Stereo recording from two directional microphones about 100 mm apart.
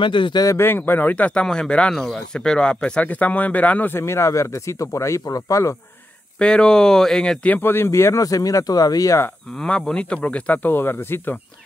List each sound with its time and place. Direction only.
0.0 s speech: 55° left (ahead or behind)
0.6 s speech: 20° left (ahead or behind)
6.3 s speech: 10° left (ahead or behind)
7.5 s speech: 20° left (ahead or behind)
9.5 s speech: 10° left (ahead or behind)